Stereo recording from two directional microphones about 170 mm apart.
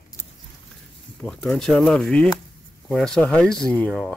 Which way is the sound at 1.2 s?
5° left (ahead or behind).